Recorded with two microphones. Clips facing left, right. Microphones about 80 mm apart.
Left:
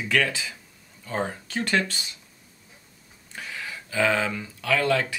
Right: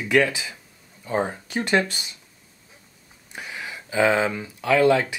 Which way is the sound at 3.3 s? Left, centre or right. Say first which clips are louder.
Right 1 dB; centre.